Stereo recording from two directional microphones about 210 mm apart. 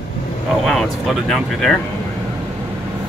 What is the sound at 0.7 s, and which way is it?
Speech, centre (ahead or behind).